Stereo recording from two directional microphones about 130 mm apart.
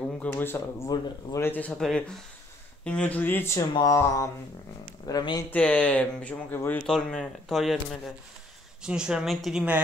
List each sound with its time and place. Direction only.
0.2 s speech: 15° left (ahead or behind)
1.8 s speech: centre (ahead or behind); by 5.4 s 30° left (ahead or behind)
5.5 s speech: 10° left (ahead or behind); by 9.8 s 5° right (ahead or behind)